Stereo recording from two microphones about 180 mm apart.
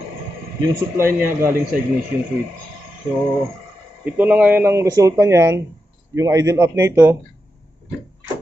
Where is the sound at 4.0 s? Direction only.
10° right (ahead or behind).